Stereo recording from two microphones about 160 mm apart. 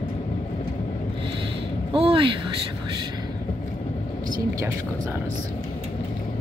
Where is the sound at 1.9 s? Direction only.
35° right (ahead or behind).